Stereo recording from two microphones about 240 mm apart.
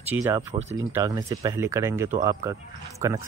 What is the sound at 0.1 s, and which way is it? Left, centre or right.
Speech, centre.